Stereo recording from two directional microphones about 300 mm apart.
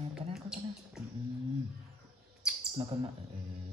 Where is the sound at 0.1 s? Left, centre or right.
Centre.